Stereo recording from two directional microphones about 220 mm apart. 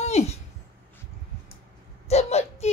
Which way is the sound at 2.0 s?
30° left (ahead or behind).